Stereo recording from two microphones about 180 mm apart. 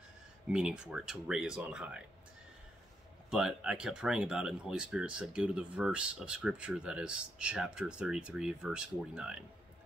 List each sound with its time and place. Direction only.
0.5 s speech: 5° right (ahead or behind)
3.3 s speech: 5° right (ahead or behind)